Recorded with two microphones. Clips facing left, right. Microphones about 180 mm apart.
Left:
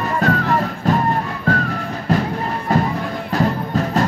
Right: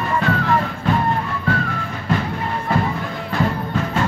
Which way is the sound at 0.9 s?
40° left (ahead or behind).